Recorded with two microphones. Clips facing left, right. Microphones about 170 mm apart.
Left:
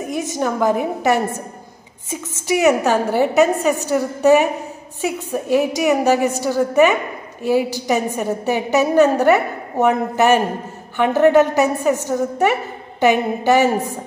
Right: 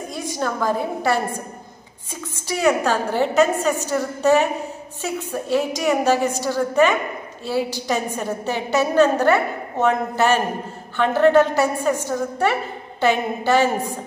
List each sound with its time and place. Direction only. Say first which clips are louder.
0.4 s a woman's voice: left 4 dB; 15° left (ahead or behind)
2.4 s a woman's voice: left 4 dB; 15° left (ahead or behind)